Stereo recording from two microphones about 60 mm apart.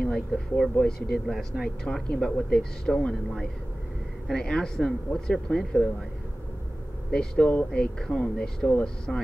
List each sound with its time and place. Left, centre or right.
0.0 s speech: centre
2.5 s speech: centre
7.1 s speech: centre